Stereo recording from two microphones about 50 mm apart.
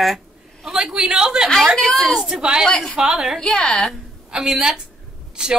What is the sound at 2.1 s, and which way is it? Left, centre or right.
Speech, centre.